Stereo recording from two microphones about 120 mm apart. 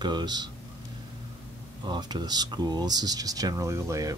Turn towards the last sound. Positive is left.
turn(degrees=-25)  # may be behind; listen again after turning